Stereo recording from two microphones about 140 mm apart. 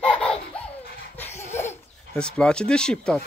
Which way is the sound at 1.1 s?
15° left (ahead or behind).